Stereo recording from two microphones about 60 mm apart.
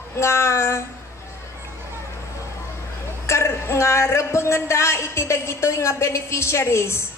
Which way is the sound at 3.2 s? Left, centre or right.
Left.